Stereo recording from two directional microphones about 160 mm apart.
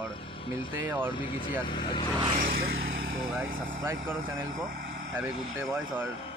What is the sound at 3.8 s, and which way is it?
Speech, 15° right (ahead or behind).